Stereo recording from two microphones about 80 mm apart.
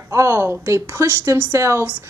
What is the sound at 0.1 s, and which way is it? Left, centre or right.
A woman's voice, right.